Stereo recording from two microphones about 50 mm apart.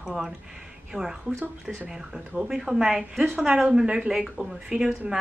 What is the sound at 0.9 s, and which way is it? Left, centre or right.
Speech, centre.